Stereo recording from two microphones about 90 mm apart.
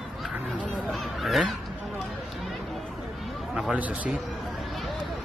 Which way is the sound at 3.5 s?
10° right (ahead or behind).